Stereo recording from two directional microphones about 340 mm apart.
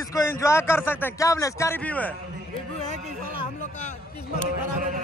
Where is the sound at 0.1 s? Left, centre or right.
Centre.